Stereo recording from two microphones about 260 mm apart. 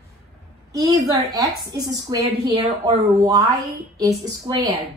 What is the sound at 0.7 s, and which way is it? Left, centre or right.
A woman's voice, centre.